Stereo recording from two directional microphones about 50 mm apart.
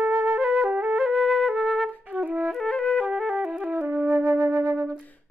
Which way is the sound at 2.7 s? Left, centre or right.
Left.